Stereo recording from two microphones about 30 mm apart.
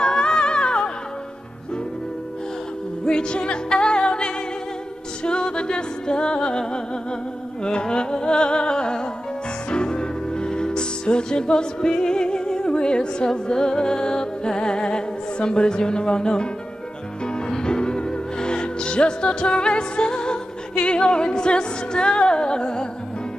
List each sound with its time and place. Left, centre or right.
0.0 s music: left
3.1 s music: left
7.6 s music: left
17.5 s music: left